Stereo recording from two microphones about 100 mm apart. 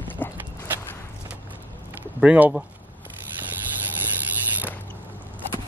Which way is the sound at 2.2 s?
15° right (ahead or behind).